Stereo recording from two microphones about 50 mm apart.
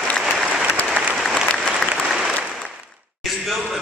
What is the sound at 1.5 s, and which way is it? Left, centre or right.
Applause, centre.